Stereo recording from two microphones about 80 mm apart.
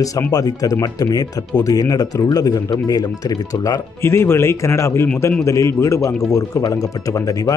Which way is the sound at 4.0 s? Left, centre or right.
Left.